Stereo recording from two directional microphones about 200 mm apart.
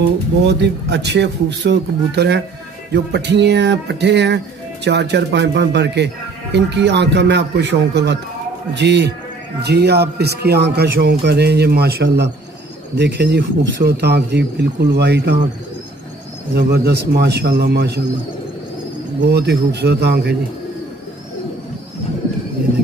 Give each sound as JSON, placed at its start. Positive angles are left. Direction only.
{"t": 0.4, "sound": "a man's voice", "side_deg": -60}
{"t": 16.5, "sound": "a man's voice", "side_deg": -55}
{"t": 19.2, "sound": "a man's voice", "side_deg": -55}